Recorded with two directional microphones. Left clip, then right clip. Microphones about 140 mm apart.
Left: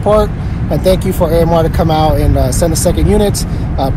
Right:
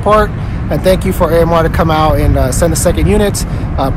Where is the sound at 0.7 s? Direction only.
45° right (ahead or behind).